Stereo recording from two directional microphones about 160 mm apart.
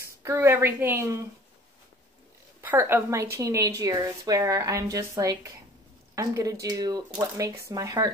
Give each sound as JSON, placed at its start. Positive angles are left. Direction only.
{"t": 0.0, "sound": "a woman's voice", "side_deg": -15}
{"t": 2.6, "sound": "a woman's voice", "side_deg": -10}